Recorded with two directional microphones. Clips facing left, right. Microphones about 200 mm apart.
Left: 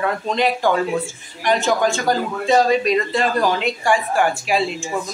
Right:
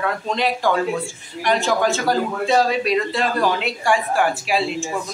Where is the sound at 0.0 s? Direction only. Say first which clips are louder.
Left 2 dB; centre (ahead or behind).